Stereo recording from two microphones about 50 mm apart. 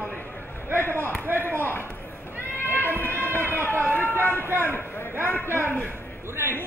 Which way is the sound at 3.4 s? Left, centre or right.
Right.